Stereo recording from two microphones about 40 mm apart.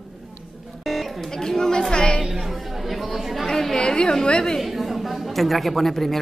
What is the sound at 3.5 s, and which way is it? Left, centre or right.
Chatter, centre.